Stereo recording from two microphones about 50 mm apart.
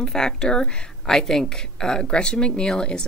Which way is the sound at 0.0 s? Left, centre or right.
Centre.